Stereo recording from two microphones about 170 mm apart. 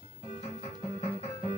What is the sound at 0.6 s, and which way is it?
Music, 35° left (ahead or behind).